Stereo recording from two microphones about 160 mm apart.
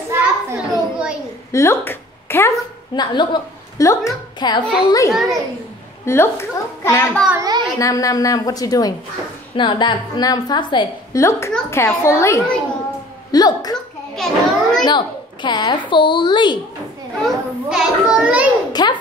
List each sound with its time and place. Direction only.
0.1 s a sound: 10° right (ahead or behind)
1.5 s speech: 15° left (ahead or behind)
2.9 s a woman's voice: 30° left (ahead or behind)
7.3 s a child's voice: 25° right (ahead or behind)
7.8 s a woman's voice: 20° left (ahead or behind)
11.1 s a child's voice: 15° left (ahead or behind)
14.1 s a child's voice: centre (ahead or behind)
14.9 s a woman's voice: 30° left (ahead or behind)
17.2 s a child's voice: 5° right (ahead or behind)
18.7 s a woman's voice: 25° left (ahead or behind)